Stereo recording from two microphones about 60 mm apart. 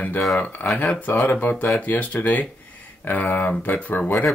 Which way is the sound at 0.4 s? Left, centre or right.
Left.